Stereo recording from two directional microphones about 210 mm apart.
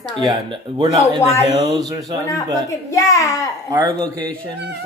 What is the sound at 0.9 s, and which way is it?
Speech, 35° left (ahead or behind).